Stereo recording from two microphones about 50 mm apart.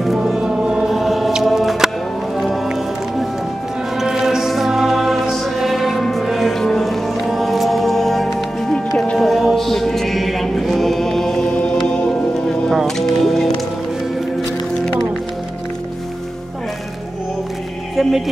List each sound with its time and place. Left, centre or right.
0.0 s music: centre
0.4 s music: centre
0.8 s choir: centre
1.4 s music: centre
8.7 s music: centre
9.2 s chant: centre
11.8 s music: centre